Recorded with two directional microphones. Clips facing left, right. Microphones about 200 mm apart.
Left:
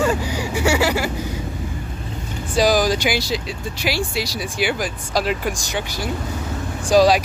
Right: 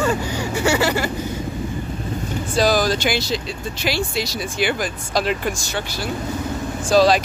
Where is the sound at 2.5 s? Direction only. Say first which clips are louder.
Left 1 dB; 15° left (ahead or behind).